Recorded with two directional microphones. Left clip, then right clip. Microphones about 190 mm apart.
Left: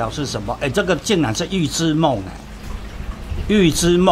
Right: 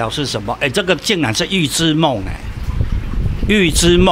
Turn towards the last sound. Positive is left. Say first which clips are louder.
# right 2 dB
turn(degrees=-15)  # may be behind; listen again after turning